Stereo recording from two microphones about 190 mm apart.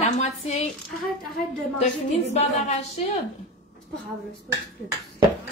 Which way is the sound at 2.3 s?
35° left (ahead or behind).